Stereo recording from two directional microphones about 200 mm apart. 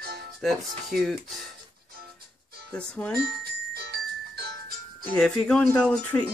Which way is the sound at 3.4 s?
55° right (ahead or behind).